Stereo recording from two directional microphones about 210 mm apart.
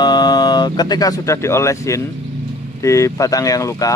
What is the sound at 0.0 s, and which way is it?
A man's voice, 20° left (ahead or behind).